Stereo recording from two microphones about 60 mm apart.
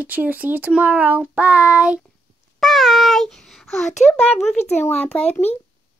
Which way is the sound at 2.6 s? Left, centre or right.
Centre.